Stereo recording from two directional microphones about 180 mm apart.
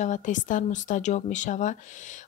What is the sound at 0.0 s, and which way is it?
Speech, 45° left (ahead or behind).